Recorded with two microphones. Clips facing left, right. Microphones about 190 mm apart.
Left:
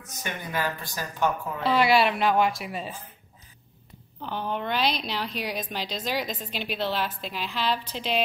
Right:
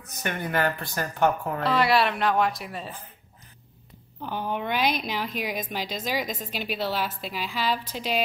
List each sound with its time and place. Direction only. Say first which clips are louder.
0.0 s speech: right 4 dB; 55° right (ahead or behind)
1.6 s a woman's voice: left 2 dB; centre (ahead or behind)
4.2 s a woman's voice: right 1 dB; 10° right (ahead or behind)